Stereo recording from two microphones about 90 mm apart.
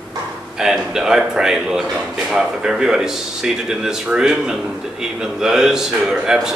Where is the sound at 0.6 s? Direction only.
5° right (ahead or behind).